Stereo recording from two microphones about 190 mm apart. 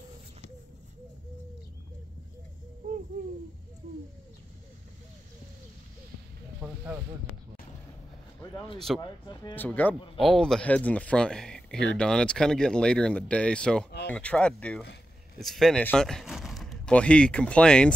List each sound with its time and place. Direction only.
6.6 s a sound: 15° right (ahead or behind)
9.0 s speech: 20° left (ahead or behind)
9.6 s speech: 10° left (ahead or behind)